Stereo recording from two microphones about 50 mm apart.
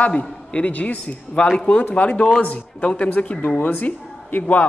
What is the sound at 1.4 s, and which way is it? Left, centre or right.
A man's voice, centre.